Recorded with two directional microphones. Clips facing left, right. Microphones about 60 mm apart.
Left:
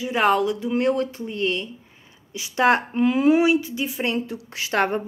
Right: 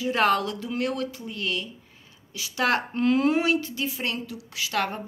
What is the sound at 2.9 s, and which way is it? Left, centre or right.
Speech, centre.